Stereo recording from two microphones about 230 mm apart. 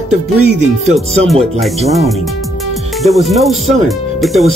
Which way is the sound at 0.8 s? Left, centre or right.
Right.